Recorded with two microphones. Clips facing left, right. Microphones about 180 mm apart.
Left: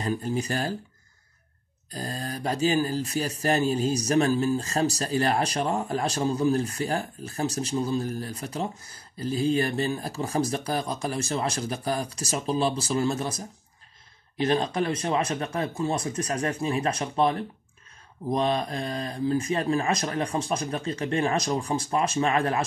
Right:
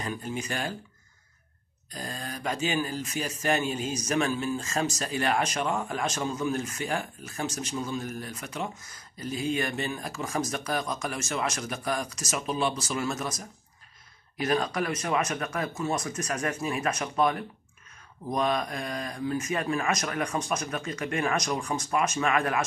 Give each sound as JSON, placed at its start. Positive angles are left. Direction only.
{"t": 0.0, "sound": "speech", "side_deg": 35}
{"t": 1.9, "sound": "speech", "side_deg": 35}